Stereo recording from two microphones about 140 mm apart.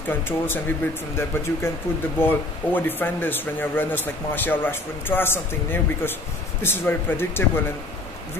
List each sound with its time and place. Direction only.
0.1 s speech: 15° left (ahead or behind)